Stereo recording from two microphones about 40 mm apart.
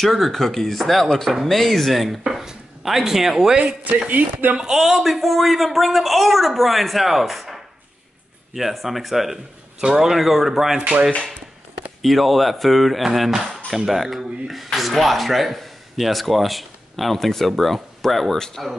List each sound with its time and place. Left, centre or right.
0.0 s speech: centre
4.1 s speech: right
4.6 s speech: centre
9.8 s speech: centre
10.1 s speech: centre
12.0 s speech: centre